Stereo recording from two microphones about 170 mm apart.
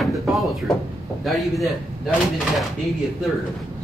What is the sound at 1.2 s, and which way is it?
Speech, centre (ahead or behind).